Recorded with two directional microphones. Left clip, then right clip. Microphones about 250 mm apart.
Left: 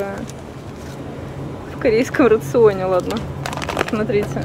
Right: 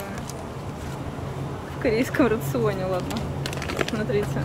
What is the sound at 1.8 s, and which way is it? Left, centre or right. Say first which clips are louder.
Speech: left 7 dB; centre.